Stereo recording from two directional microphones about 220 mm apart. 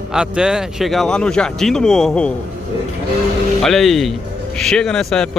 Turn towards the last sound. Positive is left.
turn(degrees=5)  # may be behind; listen again after turning